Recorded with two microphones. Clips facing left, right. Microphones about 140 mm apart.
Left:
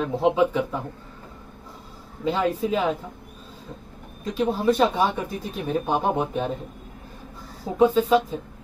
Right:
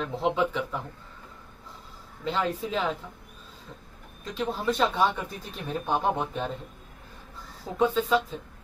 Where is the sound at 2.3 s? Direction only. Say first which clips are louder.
Left 6 dB; 10° left (ahead or behind).